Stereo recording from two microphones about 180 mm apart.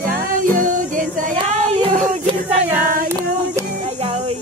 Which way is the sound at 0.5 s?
50° right (ahead or behind).